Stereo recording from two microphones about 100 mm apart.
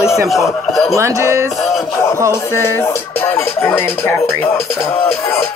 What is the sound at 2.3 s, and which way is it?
Music, 25° left (ahead or behind).